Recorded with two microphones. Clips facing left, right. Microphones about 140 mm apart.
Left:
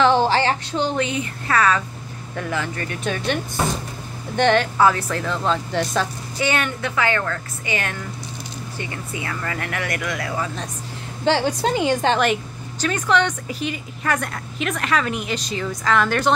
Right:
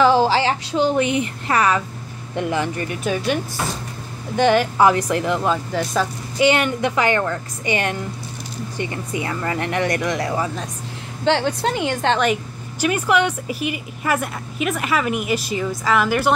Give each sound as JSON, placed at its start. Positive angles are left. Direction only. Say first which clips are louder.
{"t": 0.0, "sound": "a woman's voice", "louder": "right 1 dB", "side_deg": -5}
{"t": 3.0, "sound": "speech", "louder": "right 2 dB", "side_deg": -5}
{"t": 4.4, "sound": "a woman's voice", "louder": "right 1 dB", "side_deg": -10}
{"t": 6.3, "sound": "a woman's voice", "louder": "right 6 dB", "side_deg": -20}
{"t": 11.2, "sound": "a woman's voice", "louder": "even", "side_deg": 10}
{"t": 12.8, "sound": "a woman's voice", "louder": "right 2 dB", "side_deg": -10}